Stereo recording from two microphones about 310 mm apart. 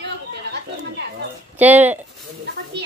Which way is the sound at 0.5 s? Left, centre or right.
Right.